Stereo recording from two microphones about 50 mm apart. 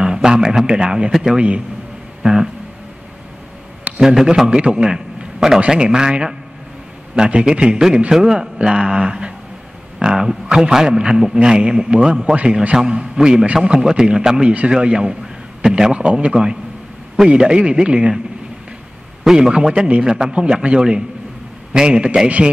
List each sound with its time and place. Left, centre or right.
0.0 s a sound: centre
1.1 s a man's voice: centre
4.0 s a man's voice: centre
12.4 s a man's voice: right
19.2 s a man's voice: centre